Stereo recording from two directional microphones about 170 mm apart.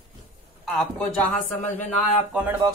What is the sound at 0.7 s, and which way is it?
Speech, 5° left (ahead or behind).